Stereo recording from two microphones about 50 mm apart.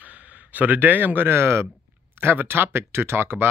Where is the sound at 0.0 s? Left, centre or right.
Right.